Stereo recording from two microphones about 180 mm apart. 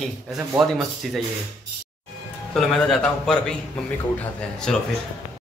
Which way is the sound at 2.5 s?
5° left (ahead or behind).